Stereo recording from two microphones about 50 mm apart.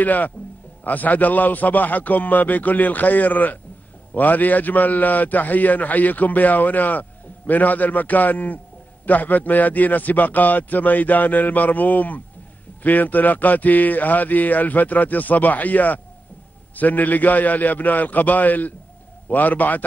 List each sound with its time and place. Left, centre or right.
0.0 s a man's voice: left